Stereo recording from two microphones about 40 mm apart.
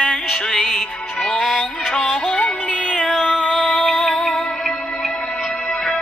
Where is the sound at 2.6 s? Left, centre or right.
Left.